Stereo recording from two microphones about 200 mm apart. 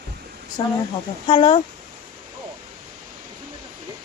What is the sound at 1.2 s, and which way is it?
Speech, 25° left (ahead or behind).